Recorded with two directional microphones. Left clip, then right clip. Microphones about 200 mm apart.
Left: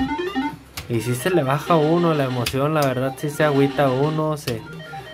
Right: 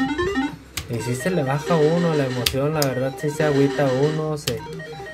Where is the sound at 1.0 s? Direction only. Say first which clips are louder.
Left 3 dB; 25° left (ahead or behind).